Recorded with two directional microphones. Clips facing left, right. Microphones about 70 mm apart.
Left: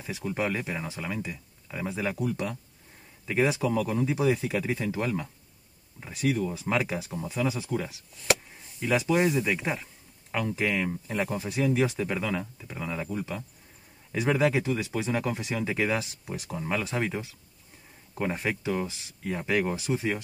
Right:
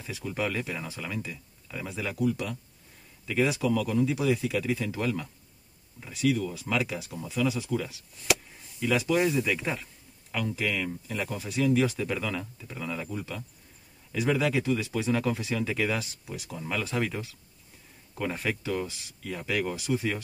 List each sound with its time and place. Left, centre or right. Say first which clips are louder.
0.0 s speech: left 2 dB; left
10.3 s speech: left 2 dB; left